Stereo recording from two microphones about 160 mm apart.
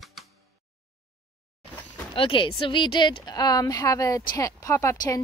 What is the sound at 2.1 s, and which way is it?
Speech, 30° left (ahead or behind).